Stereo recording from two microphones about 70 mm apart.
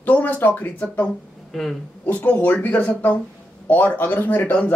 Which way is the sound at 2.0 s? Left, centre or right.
Left.